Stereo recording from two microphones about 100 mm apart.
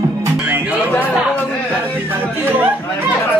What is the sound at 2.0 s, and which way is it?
Chatter, 20° right (ahead or behind).